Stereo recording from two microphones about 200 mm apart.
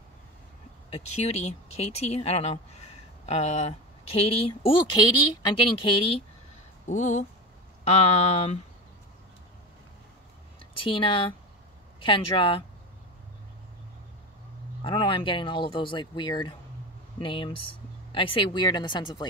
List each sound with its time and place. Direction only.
0.9 s speech: 30° left (ahead or behind)
6.9 s speech: 35° left (ahead or behind)
10.7 s speech: 25° left (ahead or behind)
14.8 s speech: 25° left (ahead or behind)